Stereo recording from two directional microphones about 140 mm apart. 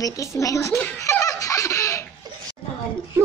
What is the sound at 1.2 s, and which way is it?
Baby laughter, 25° left (ahead or behind).